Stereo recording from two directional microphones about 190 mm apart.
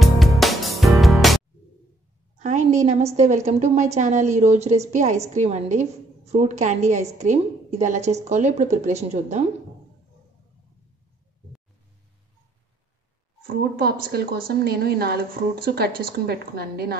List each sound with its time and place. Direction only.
0.0 s music: centre (ahead or behind)
2.3 s a woman's voice: 40° right (ahead or behind)
13.5 s a woman's voice: 50° right (ahead or behind)